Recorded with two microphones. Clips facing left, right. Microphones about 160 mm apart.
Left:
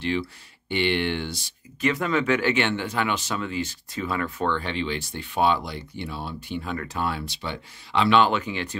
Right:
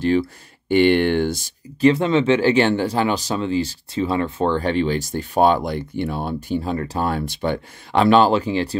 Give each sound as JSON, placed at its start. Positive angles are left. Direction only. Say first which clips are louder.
{"t": 0.0, "sound": "speech", "louder": "right 8 dB", "side_deg": -45}
{"t": 1.8, "sound": "speech", "louder": "right 8 dB", "side_deg": -30}
{"t": 6.6, "sound": "speech", "louder": "right 6 dB", "side_deg": -35}